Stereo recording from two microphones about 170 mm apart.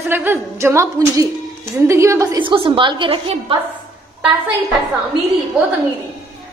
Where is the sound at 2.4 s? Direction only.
30° right (ahead or behind).